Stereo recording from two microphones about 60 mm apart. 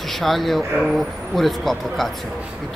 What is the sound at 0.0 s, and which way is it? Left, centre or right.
Speech, centre.